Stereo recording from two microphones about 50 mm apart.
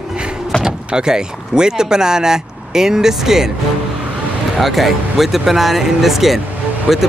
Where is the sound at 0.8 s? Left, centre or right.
Centre.